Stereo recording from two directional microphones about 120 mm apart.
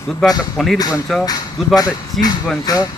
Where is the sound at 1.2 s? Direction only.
35° left (ahead or behind).